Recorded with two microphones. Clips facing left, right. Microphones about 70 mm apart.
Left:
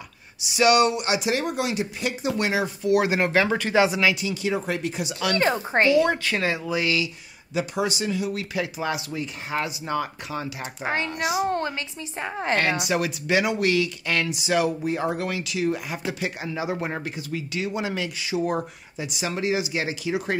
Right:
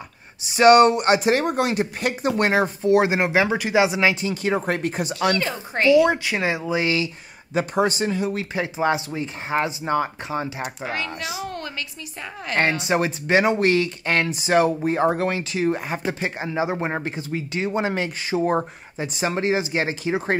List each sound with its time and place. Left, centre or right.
0.4 s speech: right
2.9 s speech: right
4.1 s speech: right
5.4 s speech: left
6.0 s speech: centre
7.5 s speech: right
10.8 s speech: left
12.8 s speech: right